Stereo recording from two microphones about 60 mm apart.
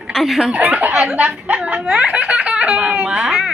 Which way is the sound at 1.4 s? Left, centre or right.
Right.